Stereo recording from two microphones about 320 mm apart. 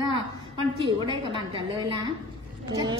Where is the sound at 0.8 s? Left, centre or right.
Centre.